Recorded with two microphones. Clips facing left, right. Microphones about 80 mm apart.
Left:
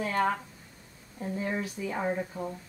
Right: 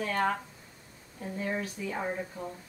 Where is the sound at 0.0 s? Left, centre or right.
Centre.